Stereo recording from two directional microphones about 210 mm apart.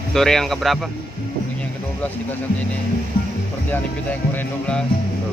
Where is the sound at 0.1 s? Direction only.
Centre (ahead or behind).